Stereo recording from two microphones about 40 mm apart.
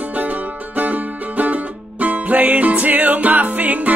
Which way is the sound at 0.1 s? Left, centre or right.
Right.